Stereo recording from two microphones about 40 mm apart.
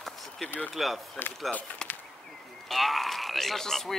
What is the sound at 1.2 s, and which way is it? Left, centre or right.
Speech, left.